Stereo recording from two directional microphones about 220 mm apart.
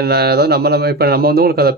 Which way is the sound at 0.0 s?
45° right (ahead or behind).